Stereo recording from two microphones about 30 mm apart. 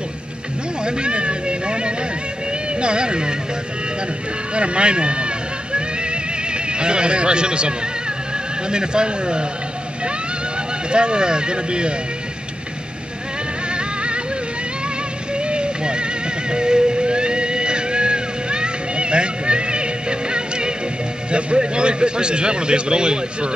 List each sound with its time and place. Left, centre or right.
0.8 s a man's voice: right
4.6 s music: right
8.6 s a man's voice: right
10.9 s a man's voice: right
13.7 s music: right
15.3 s music: right
21.3 s a man's voice: right